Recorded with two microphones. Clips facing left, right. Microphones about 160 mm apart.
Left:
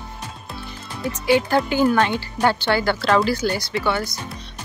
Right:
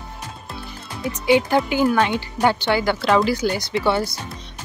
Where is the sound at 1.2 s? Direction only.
20° right (ahead or behind).